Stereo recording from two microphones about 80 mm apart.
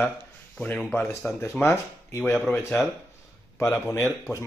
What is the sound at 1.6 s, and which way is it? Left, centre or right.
Speech, left.